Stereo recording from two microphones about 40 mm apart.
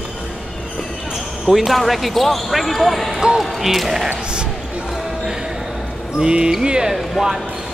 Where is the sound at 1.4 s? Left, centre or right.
Centre.